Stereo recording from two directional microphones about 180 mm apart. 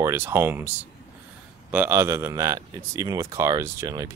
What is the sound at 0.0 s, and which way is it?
Speech, 15° right (ahead or behind).